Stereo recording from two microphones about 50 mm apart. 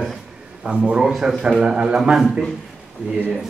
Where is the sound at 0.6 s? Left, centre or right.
Right.